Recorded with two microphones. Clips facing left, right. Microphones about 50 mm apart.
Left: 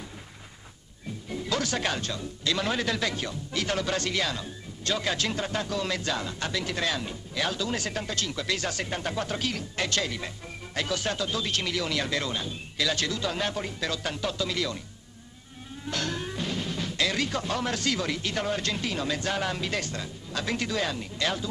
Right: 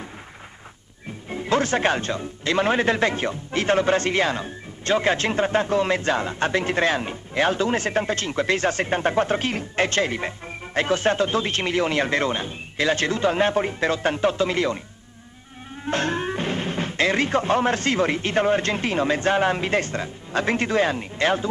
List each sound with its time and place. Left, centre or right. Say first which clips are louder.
1.3 s speech: right 8 dB; right
15.8 s speech: right 8 dB; right